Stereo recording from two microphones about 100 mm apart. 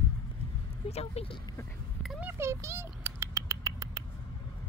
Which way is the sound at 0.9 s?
90° left.